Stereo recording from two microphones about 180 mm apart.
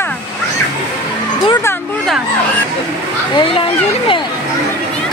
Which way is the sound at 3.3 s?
30° left (ahead or behind).